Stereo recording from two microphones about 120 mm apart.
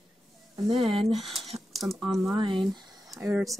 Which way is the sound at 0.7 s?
50° right (ahead or behind).